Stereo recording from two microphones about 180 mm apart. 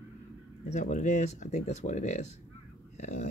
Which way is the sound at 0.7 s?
45° left (ahead or behind).